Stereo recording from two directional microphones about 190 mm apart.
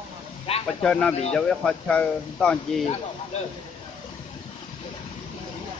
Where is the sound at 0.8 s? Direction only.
5° left (ahead or behind).